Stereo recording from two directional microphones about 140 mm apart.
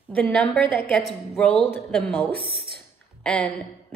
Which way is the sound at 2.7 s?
5° left (ahead or behind).